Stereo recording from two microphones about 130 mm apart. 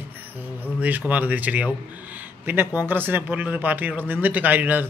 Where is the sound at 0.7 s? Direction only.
10° right (ahead or behind).